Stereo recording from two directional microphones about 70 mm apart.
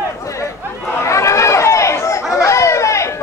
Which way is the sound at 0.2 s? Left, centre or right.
Left.